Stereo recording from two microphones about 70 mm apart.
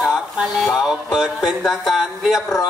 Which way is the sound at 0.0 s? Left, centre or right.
Centre.